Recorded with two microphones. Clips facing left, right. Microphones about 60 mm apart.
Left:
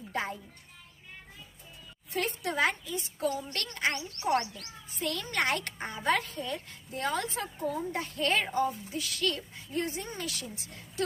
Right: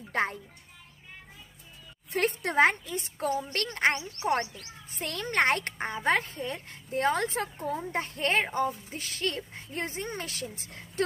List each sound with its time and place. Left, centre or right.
0.1 s a child's voice: right
2.1 s a woman's voice: right
4.2 s speech: right
4.9 s speech: right